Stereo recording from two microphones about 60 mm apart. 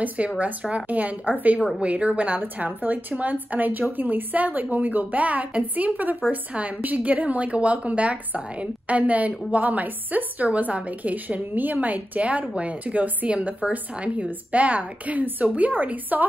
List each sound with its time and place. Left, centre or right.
0.4 s a woman's voice: right